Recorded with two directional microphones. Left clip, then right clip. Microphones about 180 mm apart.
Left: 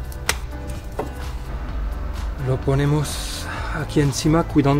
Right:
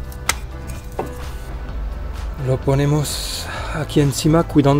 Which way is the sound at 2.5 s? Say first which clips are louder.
Right 3 dB; 20° right (ahead or behind).